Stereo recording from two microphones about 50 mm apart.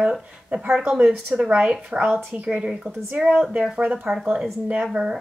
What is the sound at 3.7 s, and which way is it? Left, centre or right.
Speech, right.